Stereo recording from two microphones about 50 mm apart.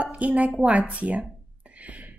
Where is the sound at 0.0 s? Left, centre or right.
Right.